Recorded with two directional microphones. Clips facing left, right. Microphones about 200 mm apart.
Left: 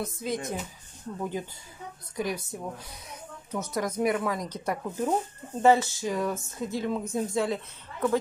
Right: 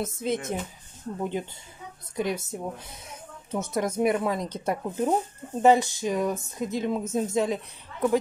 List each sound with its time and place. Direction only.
0.0 s a woman's voice: 25° right (ahead or behind)
2.1 s a woman's voice: 25° right (ahead or behind)